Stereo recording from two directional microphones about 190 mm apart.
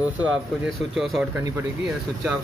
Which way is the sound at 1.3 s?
10° right (ahead or behind).